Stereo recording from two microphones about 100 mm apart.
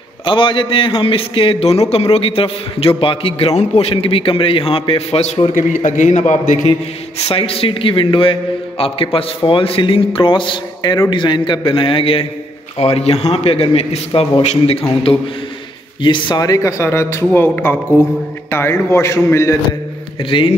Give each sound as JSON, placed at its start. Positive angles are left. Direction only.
{"t": 0.2, "sound": "a man's voice", "side_deg": 55}
{"t": 7.2, "sound": "a man's voice", "side_deg": 70}
{"t": 12.7, "sound": "a man's voice", "side_deg": 80}
{"t": 16.0, "sound": "a man's voice", "side_deg": 50}
{"t": 16.4, "sound": "speech", "side_deg": 30}
{"t": 20.2, "sound": "a man's voice", "side_deg": 60}